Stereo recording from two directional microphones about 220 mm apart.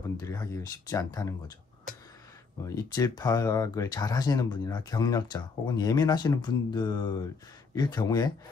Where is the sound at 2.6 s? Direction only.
15° left (ahead or behind).